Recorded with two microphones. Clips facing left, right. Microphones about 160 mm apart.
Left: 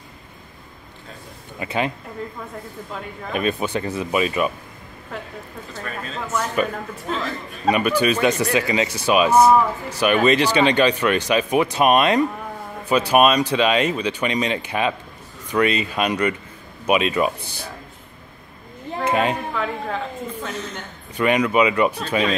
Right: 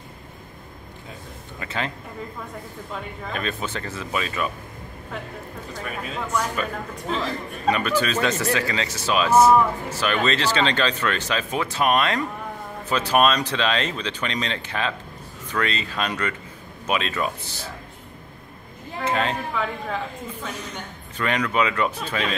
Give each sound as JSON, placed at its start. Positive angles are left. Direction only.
{"t": 1.6, "sound": "speech", "side_deg": 15}
{"t": 3.3, "sound": "speech", "side_deg": 15}
{"t": 5.1, "sound": "a man's voice", "side_deg": 0}
{"t": 5.7, "sound": "speech", "side_deg": -10}
{"t": 7.1, "sound": "a man's voice", "side_deg": 0}
{"t": 7.7, "sound": "speech", "side_deg": 15}
{"t": 19.0, "sound": "speech", "side_deg": 15}
{"t": 19.5, "sound": "a man's voice", "side_deg": 0}
{"t": 21.2, "sound": "speech", "side_deg": 10}